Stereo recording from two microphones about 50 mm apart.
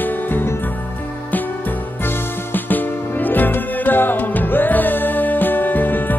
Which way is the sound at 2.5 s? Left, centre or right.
Left.